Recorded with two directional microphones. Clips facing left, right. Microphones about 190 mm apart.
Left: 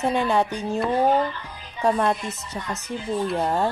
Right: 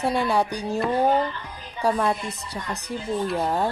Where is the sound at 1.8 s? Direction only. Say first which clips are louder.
Left 1 dB; 5° right (ahead or behind).